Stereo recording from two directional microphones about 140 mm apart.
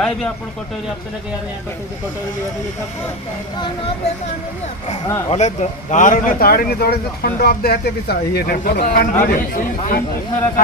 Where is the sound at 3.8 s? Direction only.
55° left (ahead or behind); by 9.1 s 80° left.